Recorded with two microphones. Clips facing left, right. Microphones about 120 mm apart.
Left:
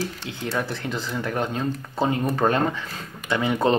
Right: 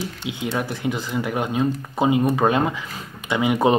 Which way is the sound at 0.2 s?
15° right (ahead or behind).